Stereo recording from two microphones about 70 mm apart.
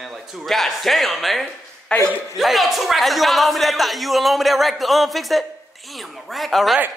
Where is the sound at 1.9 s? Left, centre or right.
Centre.